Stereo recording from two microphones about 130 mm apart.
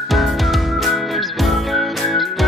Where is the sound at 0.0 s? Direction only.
Centre (ahead or behind).